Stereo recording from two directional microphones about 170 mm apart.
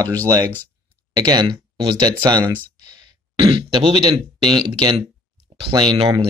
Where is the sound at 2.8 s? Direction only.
25° right (ahead or behind).